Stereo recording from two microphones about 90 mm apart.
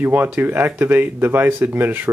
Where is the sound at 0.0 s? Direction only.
20° right (ahead or behind).